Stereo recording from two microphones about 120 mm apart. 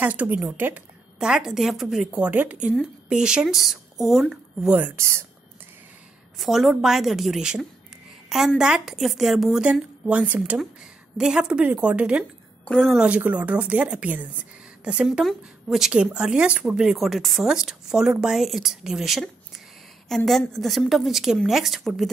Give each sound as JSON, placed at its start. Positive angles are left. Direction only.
{"t": 0.0, "sound": "a woman's voice", "side_deg": -10}
{"t": 4.7, "sound": "speech", "side_deg": -15}
{"t": 6.3, "sound": "a woman's voice", "side_deg": 0}
{"t": 12.6, "sound": "speech", "side_deg": 5}
{"t": 13.0, "sound": "a woman's voice", "side_deg": -10}